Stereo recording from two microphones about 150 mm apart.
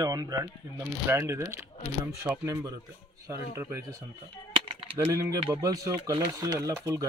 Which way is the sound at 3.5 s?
20° right (ahead or behind).